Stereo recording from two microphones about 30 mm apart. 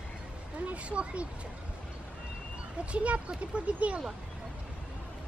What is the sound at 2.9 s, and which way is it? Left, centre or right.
Speech, right.